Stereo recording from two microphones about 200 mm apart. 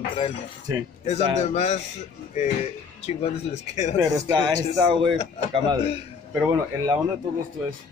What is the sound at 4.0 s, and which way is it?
Speech, 20° right (ahead or behind).